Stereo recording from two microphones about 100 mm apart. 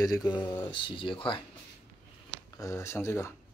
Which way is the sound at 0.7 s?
60° left (ahead or behind).